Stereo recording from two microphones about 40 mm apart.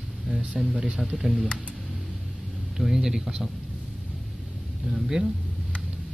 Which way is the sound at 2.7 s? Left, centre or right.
Centre.